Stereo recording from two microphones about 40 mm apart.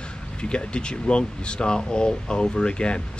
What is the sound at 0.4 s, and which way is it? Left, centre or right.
Speech, left.